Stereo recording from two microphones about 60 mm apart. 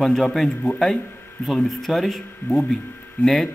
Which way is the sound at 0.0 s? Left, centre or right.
Centre.